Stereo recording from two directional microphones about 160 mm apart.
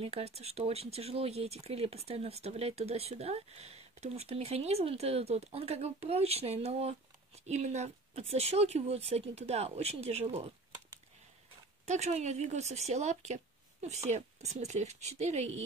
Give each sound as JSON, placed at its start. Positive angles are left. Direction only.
{"t": 0.0, "sound": "speech", "side_deg": -40}
{"t": 11.8, "sound": "speech", "side_deg": -45}